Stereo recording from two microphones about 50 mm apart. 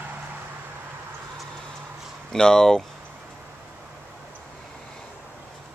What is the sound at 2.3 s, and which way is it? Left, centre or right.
Speech, centre.